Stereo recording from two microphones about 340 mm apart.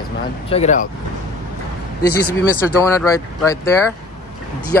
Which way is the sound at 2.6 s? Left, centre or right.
Centre.